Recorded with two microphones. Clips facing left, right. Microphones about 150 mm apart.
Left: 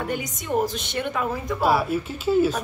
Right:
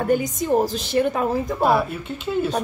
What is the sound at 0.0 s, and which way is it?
A woman's voice, 40° right (ahead or behind).